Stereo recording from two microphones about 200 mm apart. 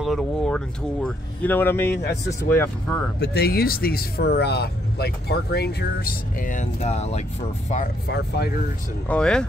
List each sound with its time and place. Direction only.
0.0 s a sound: centre (ahead or behind)
1.0 s speech: 10° left (ahead or behind)
3.2 s speech: 55° left (ahead or behind)
6.3 s speech: 40° left (ahead or behind)
8.1 s speech: 55° left (ahead or behind)
9.0 s speech: 5° left (ahead or behind)